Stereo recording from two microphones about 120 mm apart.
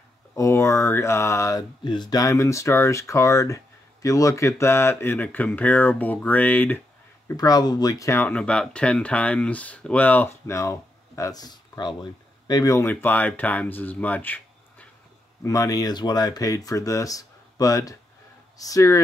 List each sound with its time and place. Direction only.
0.4 s speech: 25° left (ahead or behind)
7.3 s speech: 35° left (ahead or behind)
8.3 s speech: 10° left (ahead or behind)
15.4 s speech: 30° left (ahead or behind)